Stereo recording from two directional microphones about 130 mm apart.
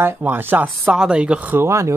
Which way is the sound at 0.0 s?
15° right (ahead or behind).